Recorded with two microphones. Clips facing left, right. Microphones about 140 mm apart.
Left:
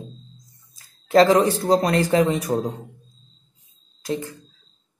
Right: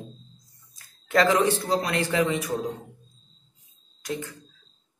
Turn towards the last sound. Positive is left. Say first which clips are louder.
# left 5 dB
turn(degrees=30)  # may be behind; listen again after turning